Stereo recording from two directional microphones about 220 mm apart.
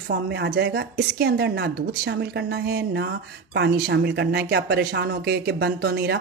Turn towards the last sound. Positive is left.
turn(degrees=-50)  # may be behind; listen again after turning